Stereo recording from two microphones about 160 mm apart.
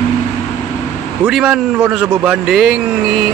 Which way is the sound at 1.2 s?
5° right (ahead or behind).